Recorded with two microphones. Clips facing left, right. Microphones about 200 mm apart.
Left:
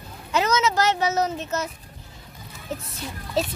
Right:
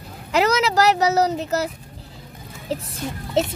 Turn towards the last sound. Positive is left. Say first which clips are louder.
# right 4 dB
turn(degrees=-25)  # may be behind; listen again after turning